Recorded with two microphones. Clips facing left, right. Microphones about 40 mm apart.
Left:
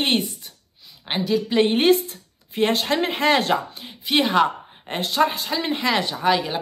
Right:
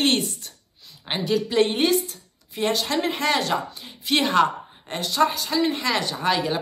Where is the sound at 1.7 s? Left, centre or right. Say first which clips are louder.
Left 4 dB; left.